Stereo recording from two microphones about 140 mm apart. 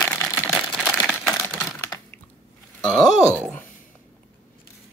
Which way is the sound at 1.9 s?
20° left (ahead or behind).